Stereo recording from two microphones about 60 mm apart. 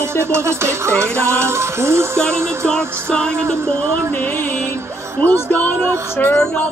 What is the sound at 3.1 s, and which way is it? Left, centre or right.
Music, centre.